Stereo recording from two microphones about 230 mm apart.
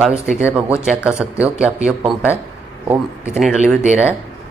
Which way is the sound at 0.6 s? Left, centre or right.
Centre.